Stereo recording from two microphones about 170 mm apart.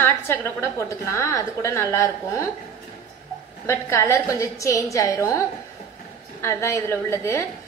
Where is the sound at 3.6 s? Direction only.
15° left (ahead or behind).